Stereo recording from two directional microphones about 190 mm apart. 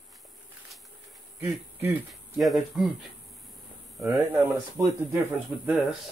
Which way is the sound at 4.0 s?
15° right (ahead or behind).